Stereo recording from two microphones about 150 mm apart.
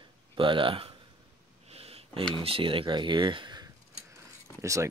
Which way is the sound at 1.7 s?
40° right (ahead or behind).